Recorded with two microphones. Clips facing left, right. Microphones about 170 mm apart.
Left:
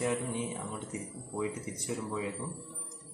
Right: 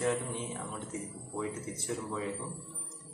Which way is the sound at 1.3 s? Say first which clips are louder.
Left 2 dB; 15° left (ahead or behind).